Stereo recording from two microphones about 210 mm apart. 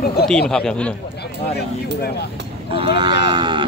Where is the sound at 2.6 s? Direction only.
25° right (ahead or behind).